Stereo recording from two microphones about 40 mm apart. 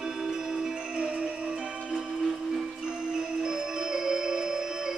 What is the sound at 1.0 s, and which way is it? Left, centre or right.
Music, right.